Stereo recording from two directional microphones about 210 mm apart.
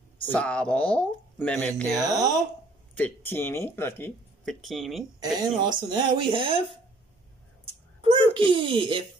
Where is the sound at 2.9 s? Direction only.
10° left (ahead or behind).